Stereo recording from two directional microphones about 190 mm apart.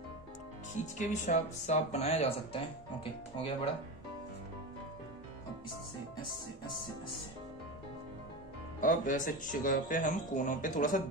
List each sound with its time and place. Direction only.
0.9 s speech: 40° left (ahead or behind)
8.8 s speech: 45° left (ahead or behind)